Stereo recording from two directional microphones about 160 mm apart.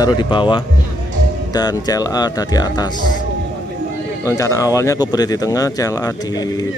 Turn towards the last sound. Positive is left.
turn(degrees=20)  # may be behind; listen again after turning